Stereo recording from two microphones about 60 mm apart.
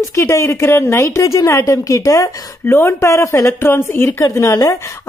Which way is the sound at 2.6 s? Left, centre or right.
Left.